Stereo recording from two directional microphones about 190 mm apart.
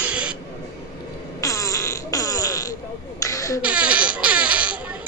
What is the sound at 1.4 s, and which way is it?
Fart, 15° left (ahead or behind).